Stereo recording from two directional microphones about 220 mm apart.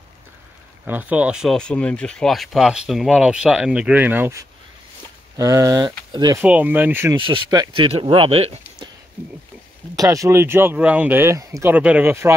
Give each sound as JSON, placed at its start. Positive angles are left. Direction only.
{"t": 0.8, "sound": "speech", "side_deg": -5}
{"t": 6.4, "sound": "speech", "side_deg": -5}
{"t": 7.2, "sound": "speech", "side_deg": -20}
{"t": 9.9, "sound": "speech", "side_deg": -15}